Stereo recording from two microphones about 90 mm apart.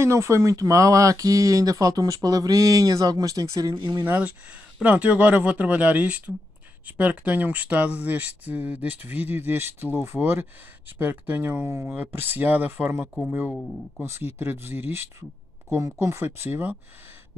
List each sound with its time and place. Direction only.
0.0 s speech: 30° right (ahead or behind)
4.0 s speech: 15° right (ahead or behind)
13.5 s speech: 5° left (ahead or behind)
14.0 s speech: 25° right (ahead or behind)